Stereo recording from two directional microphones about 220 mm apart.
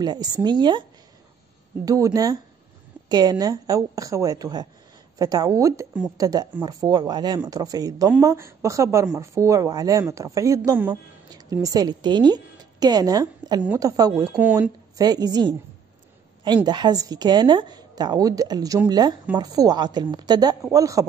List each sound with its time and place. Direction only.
0.0 s a woman's voice: 20° right (ahead or behind)
1.9 s speech: 15° right (ahead or behind)
14.3 s speech: 5° right (ahead or behind)
15.0 s a woman's voice: 15° right (ahead or behind)